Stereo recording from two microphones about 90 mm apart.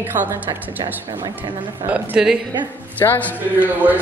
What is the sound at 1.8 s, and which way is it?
Speech, 15° right (ahead or behind).